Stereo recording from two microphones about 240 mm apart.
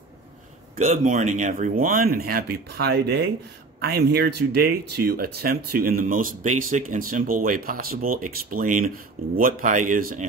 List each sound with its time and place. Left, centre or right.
1.0 s speech: right